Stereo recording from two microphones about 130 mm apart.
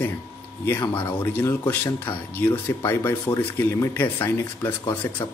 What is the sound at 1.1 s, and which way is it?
Speech, 15° left (ahead or behind).